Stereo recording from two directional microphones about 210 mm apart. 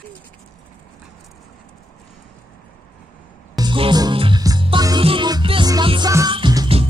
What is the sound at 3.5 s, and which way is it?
Music, 25° right (ahead or behind).